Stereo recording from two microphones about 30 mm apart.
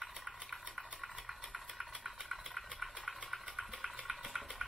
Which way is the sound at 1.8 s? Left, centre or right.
Centre.